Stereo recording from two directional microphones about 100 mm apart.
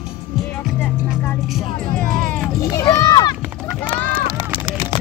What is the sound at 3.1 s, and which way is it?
Run, 45° left (ahead or behind).